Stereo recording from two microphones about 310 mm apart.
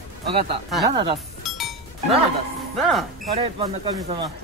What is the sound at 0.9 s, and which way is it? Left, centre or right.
Speech, centre.